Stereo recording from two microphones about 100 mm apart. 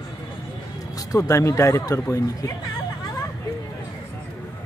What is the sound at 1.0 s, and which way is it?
Speech, 35° left (ahead or behind).